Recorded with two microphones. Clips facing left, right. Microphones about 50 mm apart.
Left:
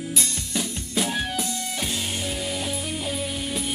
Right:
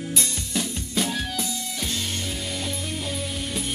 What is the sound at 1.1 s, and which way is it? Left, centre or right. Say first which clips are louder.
Music: left 2 dB; centre.